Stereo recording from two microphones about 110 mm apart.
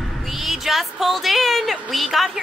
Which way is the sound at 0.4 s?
Centre (ahead or behind).